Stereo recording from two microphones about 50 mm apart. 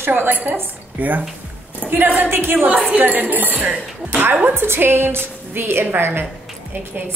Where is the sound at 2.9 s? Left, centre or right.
Right.